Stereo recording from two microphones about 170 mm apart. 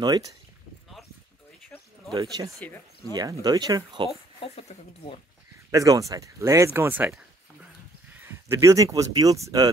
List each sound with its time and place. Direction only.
0.0 s speech: 20° right (ahead or behind)
2.1 s speech: 25° right (ahead or behind)
4.4 s speech: 35° left (ahead or behind)
5.7 s speech: 20° right (ahead or behind)